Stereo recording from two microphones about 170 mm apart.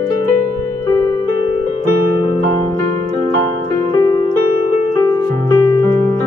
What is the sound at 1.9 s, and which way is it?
Music, 60° right (ahead or behind).